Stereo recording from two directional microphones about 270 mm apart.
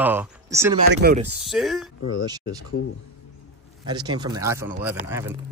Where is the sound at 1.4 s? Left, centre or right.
Centre.